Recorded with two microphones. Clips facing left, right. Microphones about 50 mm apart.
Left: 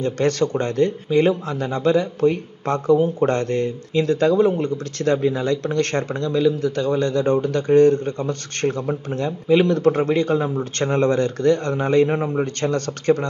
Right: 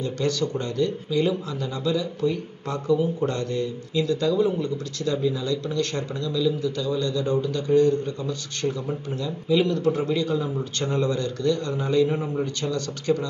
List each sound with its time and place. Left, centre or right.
0.0 s speech: left